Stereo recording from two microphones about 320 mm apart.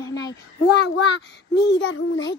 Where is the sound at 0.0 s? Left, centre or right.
Centre.